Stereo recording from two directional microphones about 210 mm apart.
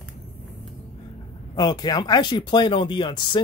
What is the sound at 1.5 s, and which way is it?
Speech, 20° left (ahead or behind).